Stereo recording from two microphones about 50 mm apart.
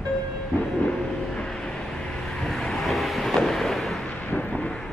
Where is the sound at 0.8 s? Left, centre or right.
Centre.